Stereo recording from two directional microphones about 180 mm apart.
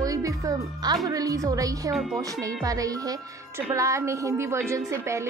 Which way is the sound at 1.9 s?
Centre (ahead or behind).